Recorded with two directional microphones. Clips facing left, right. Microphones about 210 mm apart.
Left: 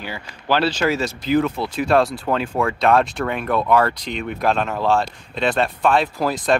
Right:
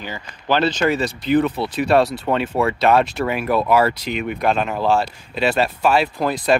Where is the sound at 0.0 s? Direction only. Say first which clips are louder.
Even; 10° left (ahead or behind).